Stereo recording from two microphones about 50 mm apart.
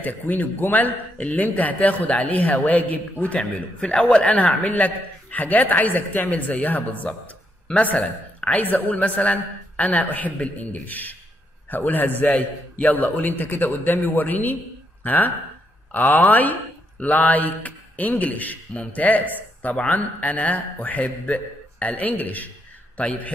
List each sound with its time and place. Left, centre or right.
0.0 s a woman's voice: left
3.3 s a man's voice: centre